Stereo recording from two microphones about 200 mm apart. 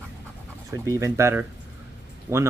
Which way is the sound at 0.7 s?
15° right (ahead or behind).